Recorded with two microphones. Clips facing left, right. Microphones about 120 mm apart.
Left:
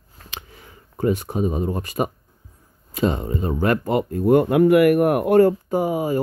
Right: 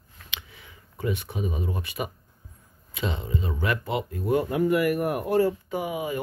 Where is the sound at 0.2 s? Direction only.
40° left (ahead or behind).